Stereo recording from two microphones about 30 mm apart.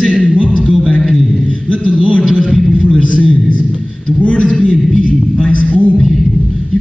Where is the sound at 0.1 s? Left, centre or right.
Left.